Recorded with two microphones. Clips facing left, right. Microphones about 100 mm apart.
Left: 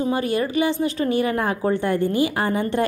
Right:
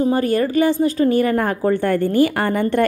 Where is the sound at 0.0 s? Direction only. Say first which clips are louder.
Right 5 dB; 40° right (ahead or behind).